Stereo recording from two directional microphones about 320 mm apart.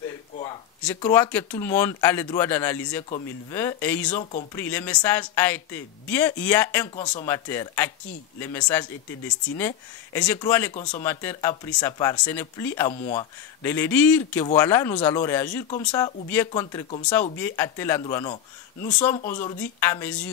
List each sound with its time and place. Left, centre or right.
0.8 s speech: centre
4.2 s speech: left
4.6 s speech: centre
10.7 s speech: centre
11.0 s speech: centre